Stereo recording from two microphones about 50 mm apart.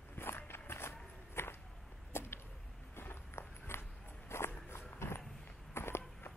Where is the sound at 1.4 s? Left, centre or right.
Left.